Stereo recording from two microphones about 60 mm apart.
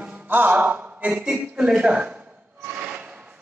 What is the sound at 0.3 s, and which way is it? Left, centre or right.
A man's voice, right.